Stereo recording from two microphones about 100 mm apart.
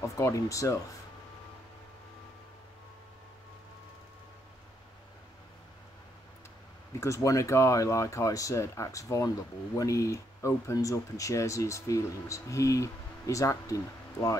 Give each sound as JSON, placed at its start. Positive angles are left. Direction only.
{"t": 0.0, "sound": "speech", "side_deg": 30}
{"t": 7.0, "sound": "speech", "side_deg": 30}